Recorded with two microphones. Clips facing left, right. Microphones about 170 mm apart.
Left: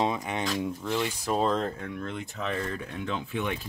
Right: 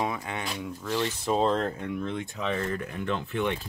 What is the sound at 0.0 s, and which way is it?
Speech, 20° left (ahead or behind).